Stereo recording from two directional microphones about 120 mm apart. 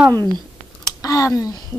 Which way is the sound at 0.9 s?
30° left (ahead or behind).